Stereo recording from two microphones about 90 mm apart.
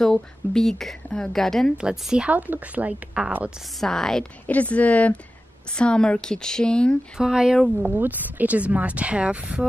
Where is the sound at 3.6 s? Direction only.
Centre (ahead or behind).